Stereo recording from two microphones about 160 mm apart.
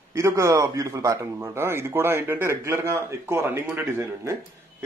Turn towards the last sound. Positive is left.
turn(degrees=-20)  # may be behind; listen again after turning